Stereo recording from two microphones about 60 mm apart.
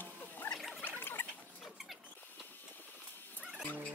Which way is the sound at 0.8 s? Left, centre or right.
Left.